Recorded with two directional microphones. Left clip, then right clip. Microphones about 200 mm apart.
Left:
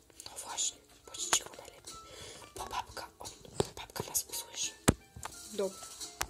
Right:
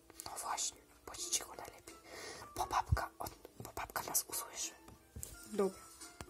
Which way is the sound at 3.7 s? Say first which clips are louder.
Left 1 dB; 10° right (ahead or behind).